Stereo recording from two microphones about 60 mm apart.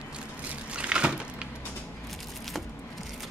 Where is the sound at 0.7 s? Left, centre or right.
Centre.